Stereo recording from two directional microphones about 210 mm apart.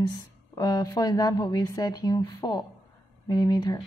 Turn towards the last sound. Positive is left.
turn(degrees=20)  # may be behind; listen again after turning